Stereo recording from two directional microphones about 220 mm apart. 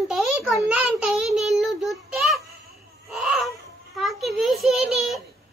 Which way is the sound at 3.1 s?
Centre (ahead or behind).